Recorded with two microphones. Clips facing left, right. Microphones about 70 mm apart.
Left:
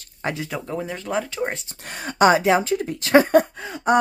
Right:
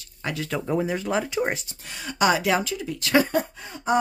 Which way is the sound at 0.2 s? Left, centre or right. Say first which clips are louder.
Left 3 dB; left.